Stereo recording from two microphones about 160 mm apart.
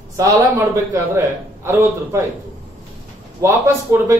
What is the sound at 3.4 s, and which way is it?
Speech, 15° right (ahead or behind).